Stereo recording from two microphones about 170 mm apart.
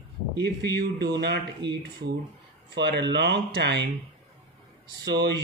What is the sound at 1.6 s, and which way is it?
Speech, 90° right.